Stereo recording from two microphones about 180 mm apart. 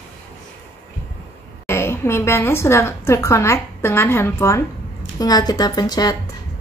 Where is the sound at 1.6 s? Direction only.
15° left (ahead or behind).